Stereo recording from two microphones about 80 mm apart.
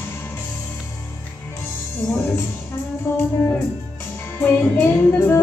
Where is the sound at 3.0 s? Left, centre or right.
Left.